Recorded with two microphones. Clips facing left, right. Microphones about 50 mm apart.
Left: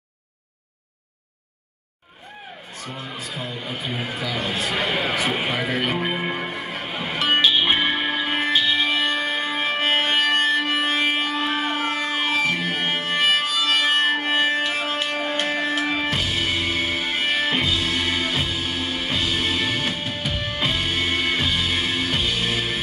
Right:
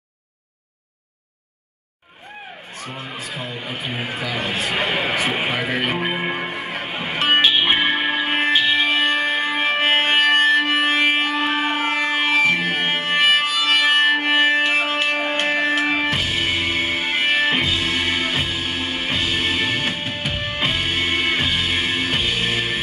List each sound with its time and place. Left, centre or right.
2.9 s speech: centre
3.6 s speech: right
6.1 s music: centre